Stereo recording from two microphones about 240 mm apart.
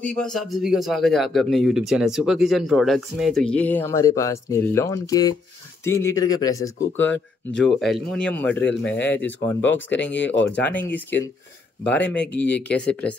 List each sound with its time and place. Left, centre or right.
0.0 s a man's voice: centre
9.7 s speech: left
10.5 s a man's voice: centre